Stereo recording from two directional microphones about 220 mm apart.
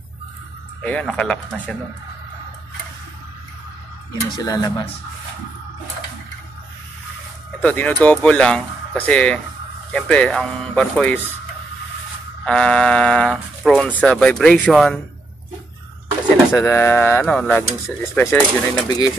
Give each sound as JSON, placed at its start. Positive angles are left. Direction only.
{"t": 0.8, "sound": "speech", "side_deg": 5}
{"t": 4.3, "sound": "speech", "side_deg": 20}
{"t": 7.6, "sound": "speech", "side_deg": 5}
{"t": 12.4, "sound": "speech", "side_deg": 5}
{"t": 16.5, "sound": "speech", "side_deg": 10}